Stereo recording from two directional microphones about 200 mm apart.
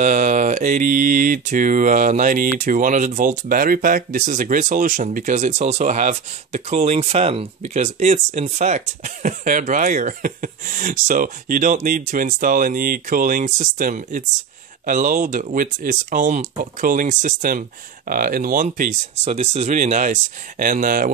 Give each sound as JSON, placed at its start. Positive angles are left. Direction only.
{"t": 0.0, "sound": "mantra", "side_deg": -40}